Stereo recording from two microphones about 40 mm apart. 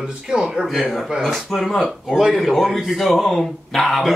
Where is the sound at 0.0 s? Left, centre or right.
Centre.